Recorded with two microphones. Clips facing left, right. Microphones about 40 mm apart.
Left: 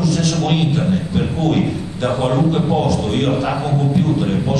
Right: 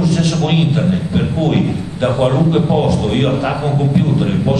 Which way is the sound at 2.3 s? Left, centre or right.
Centre.